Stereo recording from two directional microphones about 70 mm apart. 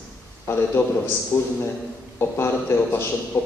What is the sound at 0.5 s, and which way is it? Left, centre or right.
A man's voice, left.